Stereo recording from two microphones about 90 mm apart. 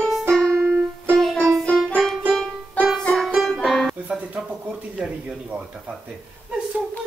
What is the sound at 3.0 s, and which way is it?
Music, 5° left (ahead or behind).